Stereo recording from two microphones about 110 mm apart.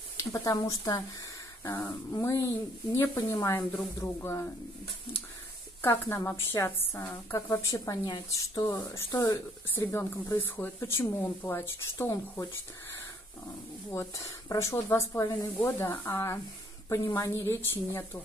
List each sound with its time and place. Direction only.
0.2 s speech: 30° left (ahead or behind)
1.6 s a sound: 25° left (ahead or behind)
2.1 s a woman's voice: 30° left (ahead or behind)
5.8 s a woman's voice: 25° left (ahead or behind)
13.8 s a woman's voice: 25° left (ahead or behind)